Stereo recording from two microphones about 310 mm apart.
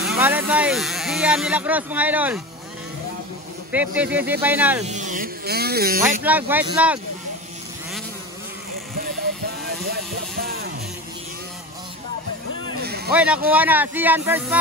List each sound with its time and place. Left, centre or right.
0.0 s speech: centre
3.7 s speech: centre
4.8 s speech: right
6.2 s speech: centre
9.7 s vehicle: right
12.8 s a sound: right
13.1 s speech: centre